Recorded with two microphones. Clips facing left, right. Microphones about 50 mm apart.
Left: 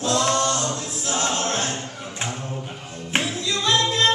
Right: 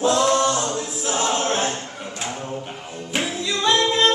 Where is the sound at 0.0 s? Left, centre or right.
Centre.